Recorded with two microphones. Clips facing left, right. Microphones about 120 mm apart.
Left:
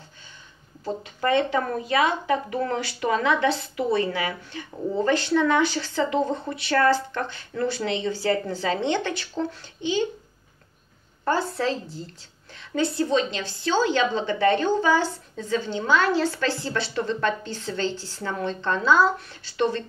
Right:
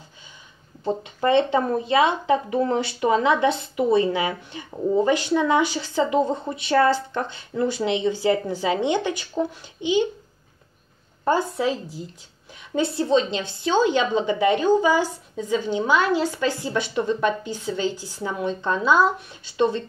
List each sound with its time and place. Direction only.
0.8 s speech: 25° right (ahead or behind)
11.2 s a woman's voice: 15° right (ahead or behind)
12.7 s a woman's voice: 25° right (ahead or behind)